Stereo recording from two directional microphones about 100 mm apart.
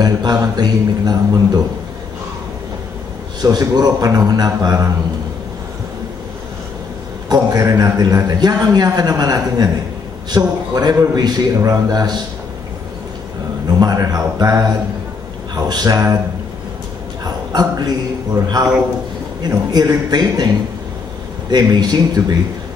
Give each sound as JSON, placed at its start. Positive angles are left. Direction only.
{"t": 0.0, "sound": "a man's voice", "side_deg": -45}
{"t": 3.3, "sound": "a man's voice", "side_deg": -40}
{"t": 7.2, "sound": "a man's voice", "side_deg": -40}
{"t": 13.7, "sound": "a man's voice", "side_deg": -40}
{"t": 17.2, "sound": "a sound", "side_deg": -40}
{"t": 19.7, "sound": "a man's voice", "side_deg": -40}
{"t": 21.5, "sound": "speech", "side_deg": -45}